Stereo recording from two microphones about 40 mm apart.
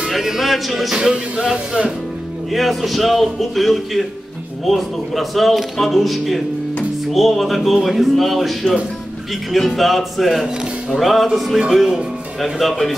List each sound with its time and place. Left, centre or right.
0.2 s music: centre
1.1 s speech: right
2.5 s speech: centre
12.5 s speech: centre